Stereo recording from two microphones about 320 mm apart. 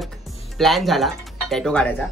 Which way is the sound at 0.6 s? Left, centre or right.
Centre.